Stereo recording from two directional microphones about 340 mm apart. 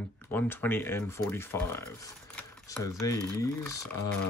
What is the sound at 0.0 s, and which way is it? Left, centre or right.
Speech, centre.